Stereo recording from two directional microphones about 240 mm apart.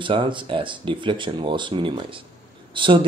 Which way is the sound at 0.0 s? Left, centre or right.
Right.